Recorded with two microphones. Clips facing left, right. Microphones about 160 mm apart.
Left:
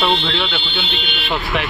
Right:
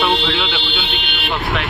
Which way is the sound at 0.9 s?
65° right (ahead or behind).